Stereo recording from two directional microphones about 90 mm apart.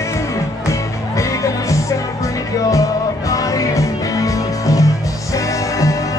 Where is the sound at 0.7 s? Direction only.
35° left (ahead or behind).